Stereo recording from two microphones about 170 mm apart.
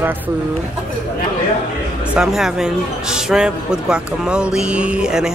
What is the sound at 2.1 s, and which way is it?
Speech, 5° right (ahead or behind).